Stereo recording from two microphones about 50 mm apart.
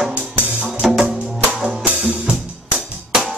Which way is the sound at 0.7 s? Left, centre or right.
Centre.